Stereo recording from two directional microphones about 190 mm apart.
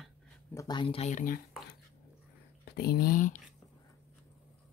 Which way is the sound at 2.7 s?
55° left (ahead or behind).